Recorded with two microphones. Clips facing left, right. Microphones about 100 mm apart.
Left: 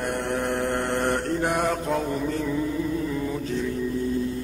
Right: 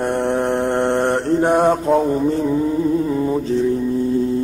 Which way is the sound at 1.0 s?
30° right (ahead or behind).